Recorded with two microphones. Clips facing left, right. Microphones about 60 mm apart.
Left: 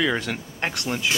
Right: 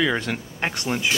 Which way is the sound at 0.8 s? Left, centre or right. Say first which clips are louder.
Right 2 dB; right.